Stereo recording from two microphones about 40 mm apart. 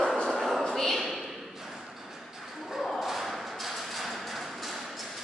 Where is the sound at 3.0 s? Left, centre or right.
Centre.